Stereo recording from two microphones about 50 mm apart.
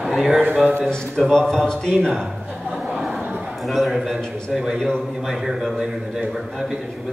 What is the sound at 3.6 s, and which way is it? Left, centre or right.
A man's voice, centre.